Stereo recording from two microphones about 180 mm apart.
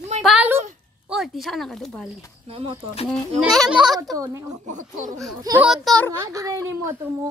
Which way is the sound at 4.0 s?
15° right (ahead or behind).